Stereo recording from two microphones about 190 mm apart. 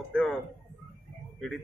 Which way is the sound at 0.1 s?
5° left (ahead or behind).